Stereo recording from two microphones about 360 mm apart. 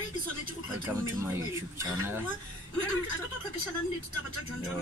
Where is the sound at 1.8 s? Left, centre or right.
Centre.